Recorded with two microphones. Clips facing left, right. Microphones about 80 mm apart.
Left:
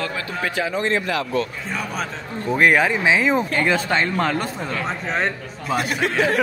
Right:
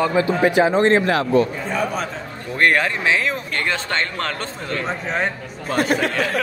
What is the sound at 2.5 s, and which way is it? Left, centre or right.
Speech, centre.